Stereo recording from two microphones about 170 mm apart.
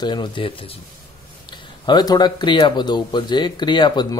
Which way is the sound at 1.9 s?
25° left (ahead or behind).